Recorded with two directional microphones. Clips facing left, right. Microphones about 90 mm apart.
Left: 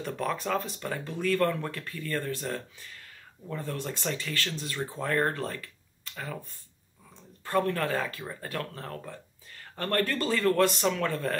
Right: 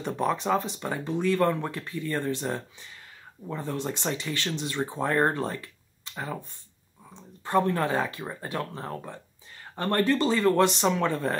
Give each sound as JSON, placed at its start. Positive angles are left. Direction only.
{"t": 0.0, "sound": "speech", "side_deg": -20}